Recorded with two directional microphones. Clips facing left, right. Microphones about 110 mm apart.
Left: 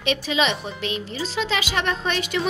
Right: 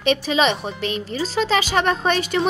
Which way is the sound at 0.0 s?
40° right (ahead or behind).